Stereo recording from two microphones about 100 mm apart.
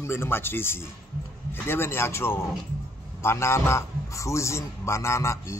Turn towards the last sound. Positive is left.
turn(degrees=30)  # may be behind; listen again after turning